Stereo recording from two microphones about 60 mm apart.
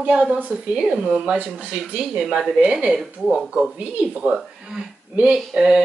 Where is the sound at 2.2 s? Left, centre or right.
Centre.